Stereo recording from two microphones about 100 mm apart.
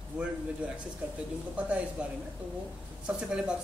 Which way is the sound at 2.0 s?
10° right (ahead or behind).